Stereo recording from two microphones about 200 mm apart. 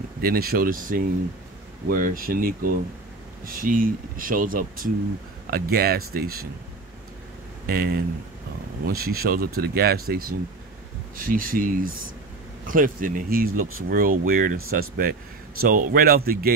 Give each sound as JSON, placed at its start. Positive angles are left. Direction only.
{"t": 0.2, "sound": "speech", "side_deg": -50}
{"t": 7.6, "sound": "speech", "side_deg": -50}
{"t": 13.5, "sound": "speech", "side_deg": -90}
{"t": 13.8, "sound": "speech", "side_deg": -45}